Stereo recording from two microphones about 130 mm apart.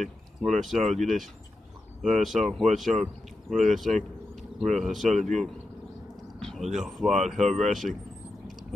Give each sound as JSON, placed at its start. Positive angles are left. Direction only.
{"t": 0.0, "sound": "speech", "side_deg": 0}